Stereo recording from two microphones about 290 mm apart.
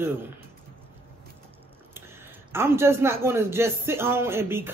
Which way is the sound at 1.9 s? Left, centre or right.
Centre.